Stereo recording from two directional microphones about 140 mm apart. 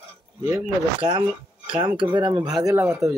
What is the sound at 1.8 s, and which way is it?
Speech, 35° right (ahead or behind).